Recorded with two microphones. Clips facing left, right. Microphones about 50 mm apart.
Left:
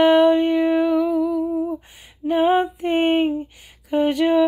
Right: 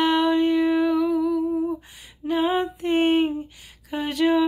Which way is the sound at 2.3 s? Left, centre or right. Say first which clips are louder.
Left 5 dB; left.